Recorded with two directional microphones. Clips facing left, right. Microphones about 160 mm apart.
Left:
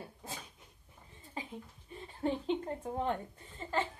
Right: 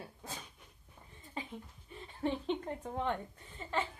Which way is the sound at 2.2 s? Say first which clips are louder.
Left 1 dB; 40° left (ahead or behind).